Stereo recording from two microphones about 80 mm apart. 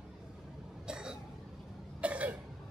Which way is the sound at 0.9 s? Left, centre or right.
Centre.